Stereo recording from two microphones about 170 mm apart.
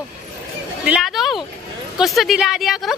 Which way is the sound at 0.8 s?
5° right (ahead or behind).